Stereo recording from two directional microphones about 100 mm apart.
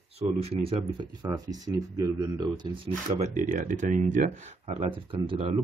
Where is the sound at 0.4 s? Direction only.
80° right.